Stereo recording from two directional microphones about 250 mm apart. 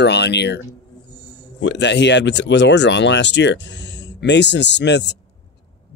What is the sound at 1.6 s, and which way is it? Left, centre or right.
Speech, left.